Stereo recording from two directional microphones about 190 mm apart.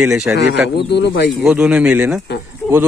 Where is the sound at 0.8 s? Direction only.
65° left (ahead or behind).